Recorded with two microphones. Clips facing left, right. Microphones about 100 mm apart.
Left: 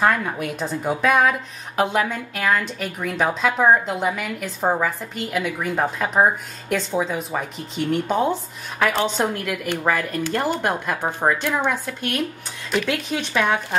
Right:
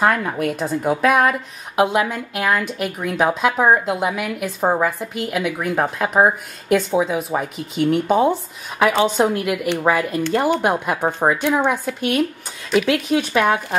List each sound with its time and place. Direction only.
0.0 s a woman's voice: 5° right (ahead or behind)